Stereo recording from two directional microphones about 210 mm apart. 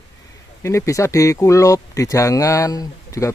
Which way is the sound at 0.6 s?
15° left (ahead or behind).